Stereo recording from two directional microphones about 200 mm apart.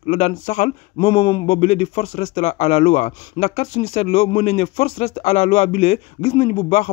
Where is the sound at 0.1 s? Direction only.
35° left (ahead or behind).